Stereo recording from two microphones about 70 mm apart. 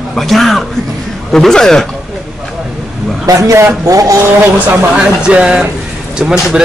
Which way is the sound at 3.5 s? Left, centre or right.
Right.